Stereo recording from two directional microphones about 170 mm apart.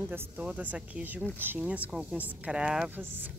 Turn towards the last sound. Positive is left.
turn(degrees=-10)  # may be behind; listen again after turning